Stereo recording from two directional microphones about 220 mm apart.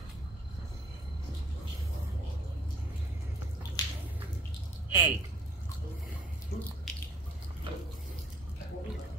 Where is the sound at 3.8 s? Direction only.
15° left (ahead or behind).